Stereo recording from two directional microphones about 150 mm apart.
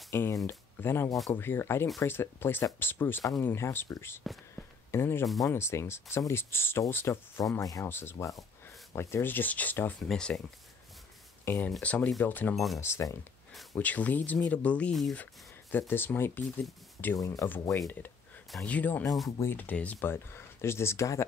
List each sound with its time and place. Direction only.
0.1 s speech: 20° left (ahead or behind)
4.2 s a sound: centre (ahead or behind)
4.9 s speech: 15° left (ahead or behind)
11.4 s speech: 15° left (ahead or behind)
12.5 s speech: centre (ahead or behind)
12.8 s speech: 20° left (ahead or behind)
15.9 s speech: 15° left (ahead or behind)